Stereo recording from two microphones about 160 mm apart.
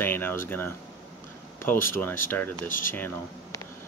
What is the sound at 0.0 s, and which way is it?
Speech, 15° left (ahead or behind).